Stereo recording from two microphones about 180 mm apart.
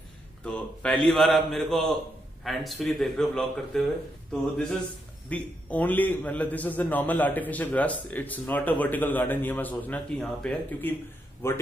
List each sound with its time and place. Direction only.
0.4 s a man's voice: 5° left (ahead or behind)